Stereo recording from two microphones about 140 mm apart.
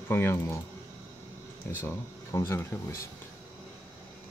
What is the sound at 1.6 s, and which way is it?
Speech, 15° left (ahead or behind).